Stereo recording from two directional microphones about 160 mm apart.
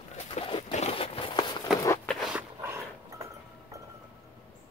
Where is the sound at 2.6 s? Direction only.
15° right (ahead or behind).